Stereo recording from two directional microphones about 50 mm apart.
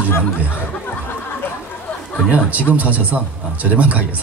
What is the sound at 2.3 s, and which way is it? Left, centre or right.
Speech, right.